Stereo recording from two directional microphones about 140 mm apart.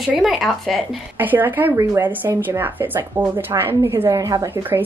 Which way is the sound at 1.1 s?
15° right (ahead or behind).